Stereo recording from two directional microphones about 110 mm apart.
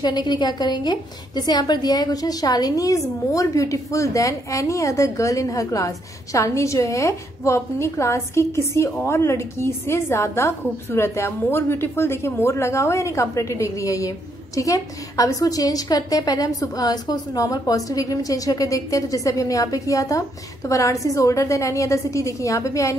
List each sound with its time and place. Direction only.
0.0 s a woman's voice: 40° left (ahead or behind)